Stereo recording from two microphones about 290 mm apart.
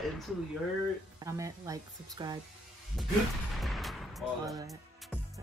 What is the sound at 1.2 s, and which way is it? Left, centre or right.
Speech, centre.